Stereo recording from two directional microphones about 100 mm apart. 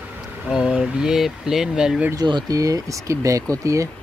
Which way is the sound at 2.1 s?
45° right (ahead or behind).